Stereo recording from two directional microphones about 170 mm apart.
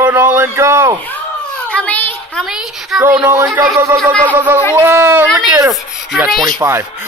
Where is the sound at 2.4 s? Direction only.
Centre (ahead or behind).